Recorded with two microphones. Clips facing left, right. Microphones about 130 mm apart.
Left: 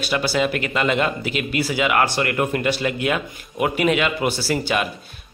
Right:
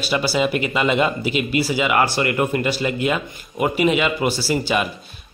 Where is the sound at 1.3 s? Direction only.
45° left (ahead or behind).